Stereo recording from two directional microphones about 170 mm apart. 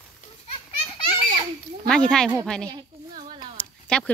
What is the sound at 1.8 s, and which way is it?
Speech, 5° left (ahead or behind).